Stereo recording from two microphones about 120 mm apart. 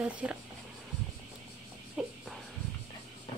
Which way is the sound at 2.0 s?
5° right (ahead or behind).